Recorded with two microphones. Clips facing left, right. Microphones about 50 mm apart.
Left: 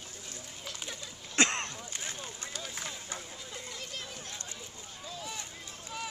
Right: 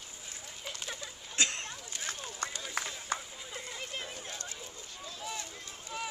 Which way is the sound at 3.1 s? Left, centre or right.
Centre.